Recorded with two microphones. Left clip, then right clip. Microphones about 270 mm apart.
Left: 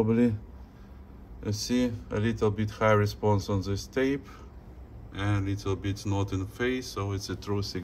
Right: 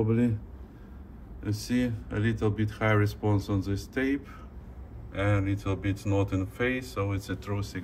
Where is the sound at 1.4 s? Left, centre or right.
Left.